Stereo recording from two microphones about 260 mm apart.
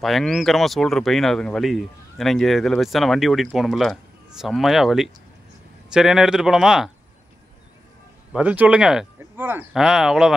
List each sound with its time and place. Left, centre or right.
0.0 s speech: centre
8.3 s speech: centre